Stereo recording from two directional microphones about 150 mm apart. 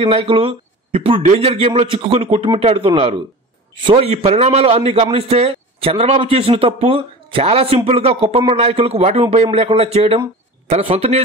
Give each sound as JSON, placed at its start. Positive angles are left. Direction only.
{"t": 0.0, "sound": "a man's voice", "side_deg": -40}